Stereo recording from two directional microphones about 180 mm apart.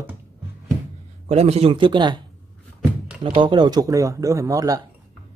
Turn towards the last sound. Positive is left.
turn(degrees=-20)  # may be behind; listen again after turning